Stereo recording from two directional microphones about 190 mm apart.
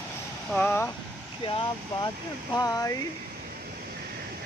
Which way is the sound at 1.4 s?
25° left (ahead or behind).